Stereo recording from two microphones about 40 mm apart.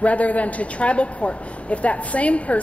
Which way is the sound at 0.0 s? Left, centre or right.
Left.